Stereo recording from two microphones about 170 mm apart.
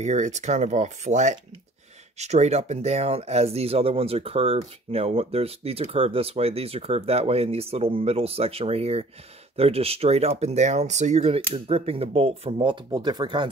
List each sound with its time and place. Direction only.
0.0 s speech: 45° right (ahead or behind); by 13.5 s 25° right (ahead or behind)